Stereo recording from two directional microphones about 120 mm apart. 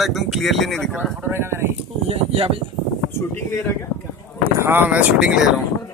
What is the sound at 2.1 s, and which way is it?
Speech, 60° right (ahead or behind).